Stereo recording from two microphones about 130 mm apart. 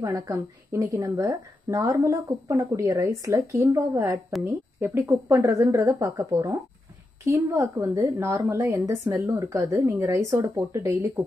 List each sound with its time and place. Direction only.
0.0 s a woman's voice: 25° right (ahead or behind)